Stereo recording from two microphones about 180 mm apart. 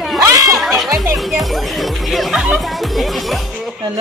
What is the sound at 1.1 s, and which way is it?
Speech, centre (ahead or behind).